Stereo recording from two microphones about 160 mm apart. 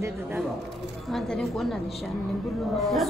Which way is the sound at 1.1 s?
Centre (ahead or behind).